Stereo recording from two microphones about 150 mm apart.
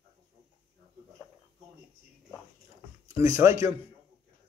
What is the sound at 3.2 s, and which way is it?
Speech, 20° right (ahead or behind).